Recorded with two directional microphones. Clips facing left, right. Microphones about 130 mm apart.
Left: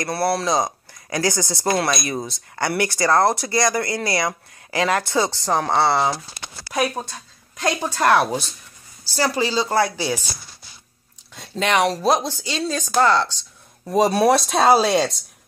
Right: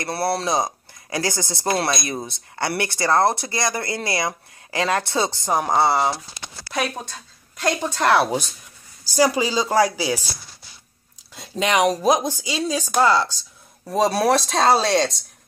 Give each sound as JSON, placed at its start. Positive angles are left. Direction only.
{"t": 0.0, "sound": "speech", "side_deg": -25}
{"t": 6.6, "sound": "a sound", "side_deg": 15}
{"t": 7.6, "sound": "a woman's voice", "side_deg": 15}
{"t": 8.0, "sound": "speech", "side_deg": -5}
{"t": 11.5, "sound": "speech", "side_deg": -10}
{"t": 13.8, "sound": "speech", "side_deg": 0}